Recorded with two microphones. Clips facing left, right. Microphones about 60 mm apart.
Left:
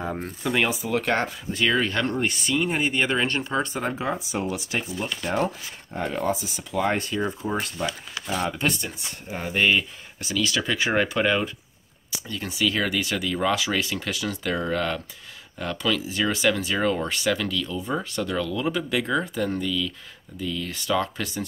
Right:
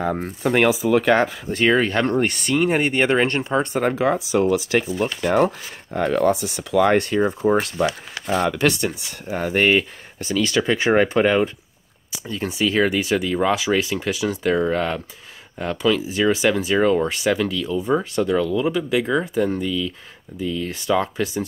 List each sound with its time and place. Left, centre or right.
0.2 s speech: right
1.7 s speech: right
3.9 s speech: right
4.9 s speech: right
7.2 s speech: right
8.1 s speech: right
8.5 s speech: right; by 18.7 s centre
18.7 s speech: centre